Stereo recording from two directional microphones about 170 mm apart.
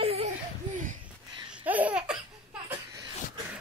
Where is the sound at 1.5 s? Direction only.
10° right (ahead or behind).